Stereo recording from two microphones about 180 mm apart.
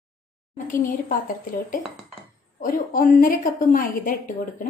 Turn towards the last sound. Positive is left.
turn(degrees=45)  # may be behind; listen again after turning